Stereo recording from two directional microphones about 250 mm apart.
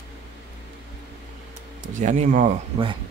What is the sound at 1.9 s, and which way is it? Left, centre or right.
Speech, right.